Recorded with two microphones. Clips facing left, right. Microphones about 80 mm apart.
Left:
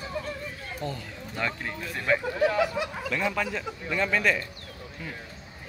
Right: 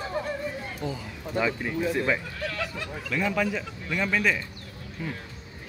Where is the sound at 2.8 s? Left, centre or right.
Centre.